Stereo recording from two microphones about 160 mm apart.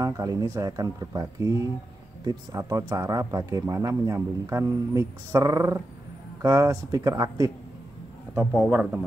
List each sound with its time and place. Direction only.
0.0 s speech: 25° right (ahead or behind)
8.4 s a man's voice: 10° right (ahead or behind)